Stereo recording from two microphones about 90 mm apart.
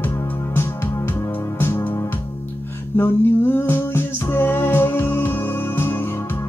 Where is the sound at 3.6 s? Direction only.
25° left (ahead or behind).